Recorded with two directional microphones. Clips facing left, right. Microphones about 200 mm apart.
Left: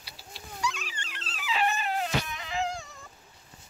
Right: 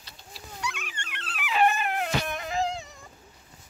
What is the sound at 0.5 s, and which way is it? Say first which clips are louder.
Dog: left 2 dB; 60° right (ahead or behind).